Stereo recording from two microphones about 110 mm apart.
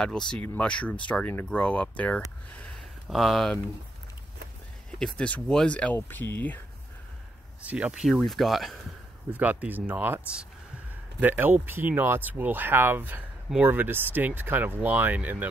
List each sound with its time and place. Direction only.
0.0 s speech: 5° left (ahead or behind)
3.1 s speech: centre (ahead or behind)
4.9 s speech: 10° left (ahead or behind)
7.7 s speech: 10° right (ahead or behind)
9.3 s speech: 15° right (ahead or behind)